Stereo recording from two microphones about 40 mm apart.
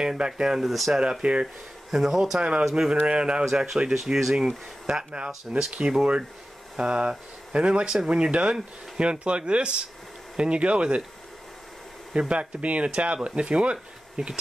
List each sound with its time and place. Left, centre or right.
0.0 s speech: centre
0.7 s speech: centre
1.2 s speech: right
1.9 s speech: centre
2.9 s speech: right
3.4 s speech: centre; by 11.0 s right
12.1 s speech: right